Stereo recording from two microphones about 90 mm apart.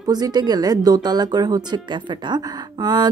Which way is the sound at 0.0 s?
45° right (ahead or behind).